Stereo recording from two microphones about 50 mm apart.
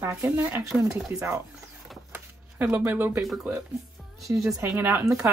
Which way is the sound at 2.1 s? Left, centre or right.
Right.